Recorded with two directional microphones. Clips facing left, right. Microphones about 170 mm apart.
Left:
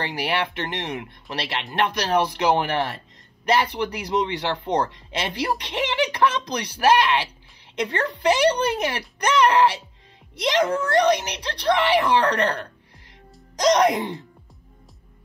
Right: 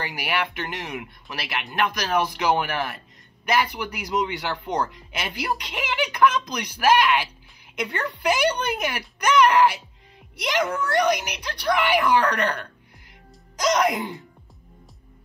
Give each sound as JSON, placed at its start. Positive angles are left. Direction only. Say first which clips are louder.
{"t": 0.0, "sound": "speech", "louder": "left 2 dB", "side_deg": 30}
{"t": 13.8, "sound": "speech", "louder": "left 3 dB", "side_deg": 20}